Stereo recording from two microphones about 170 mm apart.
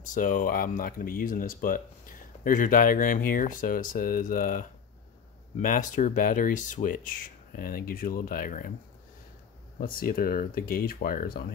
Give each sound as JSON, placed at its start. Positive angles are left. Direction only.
{"t": 0.1, "sound": "speech", "side_deg": 55}
{"t": 9.8, "sound": "speech", "side_deg": 55}